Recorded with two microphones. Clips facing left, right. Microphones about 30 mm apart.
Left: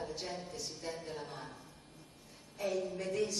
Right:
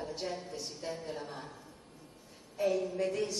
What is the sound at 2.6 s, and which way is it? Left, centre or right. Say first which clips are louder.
Speech: right 5 dB; centre.